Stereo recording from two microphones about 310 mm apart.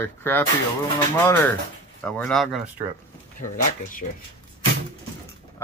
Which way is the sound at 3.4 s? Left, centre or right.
Left.